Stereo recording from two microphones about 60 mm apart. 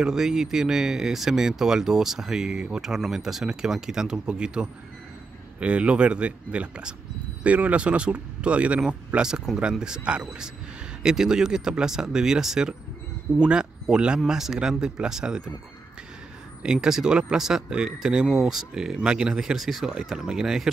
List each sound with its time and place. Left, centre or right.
0.0 s speech: centre
16.6 s speech: centre